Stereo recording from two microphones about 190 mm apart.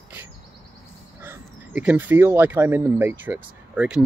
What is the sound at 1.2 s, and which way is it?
Speech, 10° right (ahead or behind).